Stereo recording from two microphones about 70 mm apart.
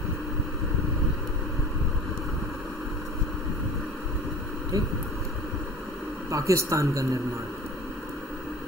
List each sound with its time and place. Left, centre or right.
4.7 s speech: right
6.3 s speech: right